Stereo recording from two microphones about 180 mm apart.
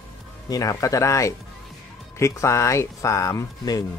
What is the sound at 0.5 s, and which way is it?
Speech, 20° left (ahead or behind).